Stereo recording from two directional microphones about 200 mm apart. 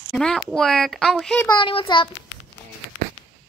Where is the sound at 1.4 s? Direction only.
25° left (ahead or behind).